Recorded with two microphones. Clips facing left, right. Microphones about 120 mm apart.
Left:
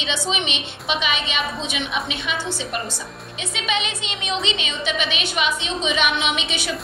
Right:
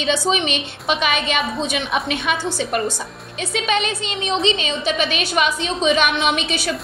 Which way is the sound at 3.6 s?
45° right (ahead or behind).